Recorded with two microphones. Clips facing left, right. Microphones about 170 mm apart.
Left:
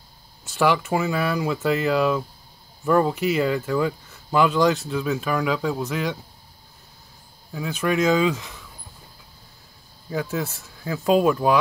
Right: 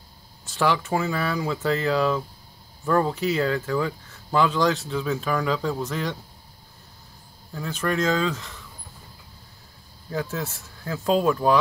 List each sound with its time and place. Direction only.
0.6 s speech: 5° left (ahead or behind)
7.5 s speech: 10° left (ahead or behind)
10.0 s speech: 5° left (ahead or behind)